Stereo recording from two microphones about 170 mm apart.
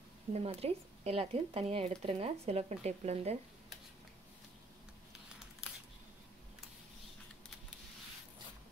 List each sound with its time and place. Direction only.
0.3 s speech: 35° right (ahead or behind)